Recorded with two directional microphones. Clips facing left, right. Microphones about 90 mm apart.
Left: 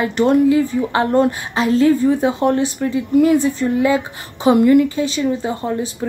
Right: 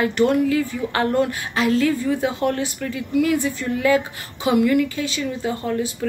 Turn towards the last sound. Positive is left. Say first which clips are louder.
# left 2 dB
turn(degrees=25)  # may be behind; listen again after turning